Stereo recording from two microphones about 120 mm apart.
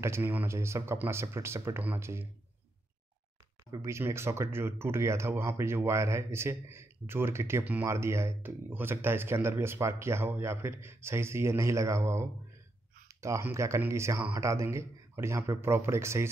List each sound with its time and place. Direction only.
0.0 s speech: 20° right (ahead or behind)
3.7 s speech: 25° right (ahead or behind)